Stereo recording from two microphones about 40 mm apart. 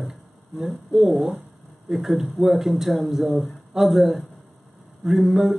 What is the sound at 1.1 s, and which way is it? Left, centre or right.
Speech, right.